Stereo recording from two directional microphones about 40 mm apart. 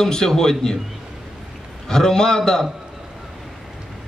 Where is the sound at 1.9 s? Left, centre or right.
Centre.